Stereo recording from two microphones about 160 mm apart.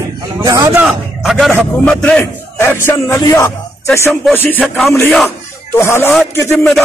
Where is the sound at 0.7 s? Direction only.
5° right (ahead or behind); by 3.5 s 15° left (ahead or behind).